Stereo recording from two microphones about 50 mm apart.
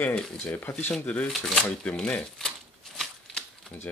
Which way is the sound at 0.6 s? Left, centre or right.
Left.